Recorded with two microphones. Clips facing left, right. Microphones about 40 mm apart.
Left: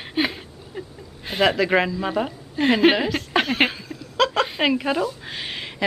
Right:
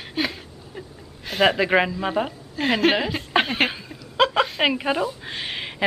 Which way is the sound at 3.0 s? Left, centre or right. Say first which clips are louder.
Even; centre.